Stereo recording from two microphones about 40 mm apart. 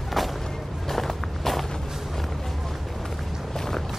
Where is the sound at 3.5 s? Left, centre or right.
Centre.